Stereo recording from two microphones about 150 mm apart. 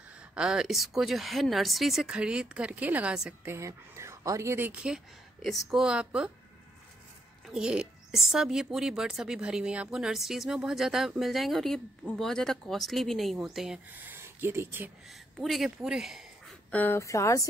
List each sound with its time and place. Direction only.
0.3 s a woman's voice: 5° right (ahead or behind)
3.5 s speech: 20° right (ahead or behind)
7.4 s a woman's voice: 5° right (ahead or behind)
13.9 s speech: 15° right (ahead or behind)
15.0 s speech: centre (ahead or behind)
16.7 s a woman's voice: 15° left (ahead or behind)